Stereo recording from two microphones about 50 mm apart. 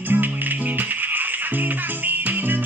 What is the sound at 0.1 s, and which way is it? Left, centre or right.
Music, right.